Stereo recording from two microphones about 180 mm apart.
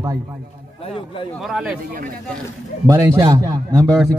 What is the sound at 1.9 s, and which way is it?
Speech, 50° right (ahead or behind).